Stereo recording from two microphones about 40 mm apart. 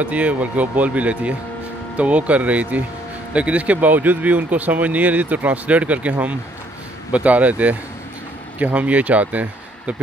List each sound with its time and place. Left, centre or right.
0.0 s a man's voice: right